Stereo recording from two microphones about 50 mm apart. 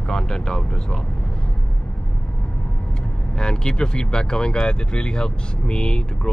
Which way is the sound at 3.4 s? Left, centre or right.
Centre.